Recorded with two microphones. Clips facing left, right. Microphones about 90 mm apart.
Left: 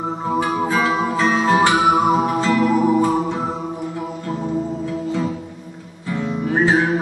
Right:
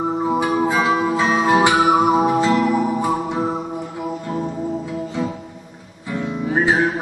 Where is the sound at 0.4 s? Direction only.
20° right (ahead or behind).